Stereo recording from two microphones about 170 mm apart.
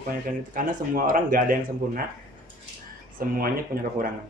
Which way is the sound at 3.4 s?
60° right (ahead or behind).